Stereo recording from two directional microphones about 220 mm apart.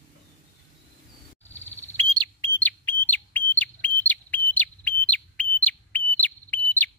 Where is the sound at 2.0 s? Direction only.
20° right (ahead or behind).